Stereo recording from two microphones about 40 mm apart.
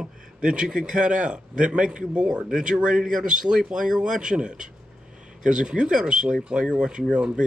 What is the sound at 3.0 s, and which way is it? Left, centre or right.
Speech, centre.